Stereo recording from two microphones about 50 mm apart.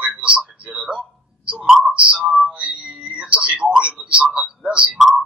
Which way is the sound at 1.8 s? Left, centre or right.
Right.